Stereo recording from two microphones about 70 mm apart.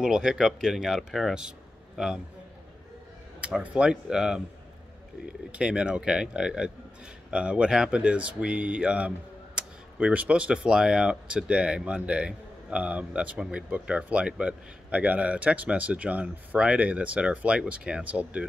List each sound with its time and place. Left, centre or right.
0.0 s speech: centre
3.3 s speech: centre
5.5 s speech: centre